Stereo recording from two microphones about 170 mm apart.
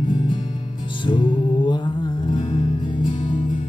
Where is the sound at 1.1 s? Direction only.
25° left (ahead or behind).